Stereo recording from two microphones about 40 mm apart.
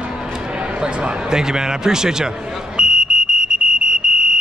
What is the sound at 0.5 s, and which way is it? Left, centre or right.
A man's voice, right.